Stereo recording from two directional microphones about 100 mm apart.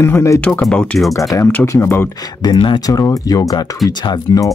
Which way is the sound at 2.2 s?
45° left (ahead or behind).